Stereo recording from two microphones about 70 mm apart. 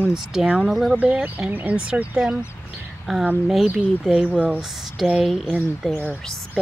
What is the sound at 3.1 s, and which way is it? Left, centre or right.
Speech, centre.